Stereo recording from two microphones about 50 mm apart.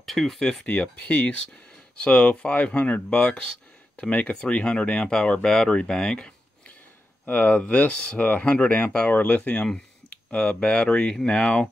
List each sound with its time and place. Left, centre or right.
0.0 s a sound: centre
0.7 s speech: left
7.2 s speech: left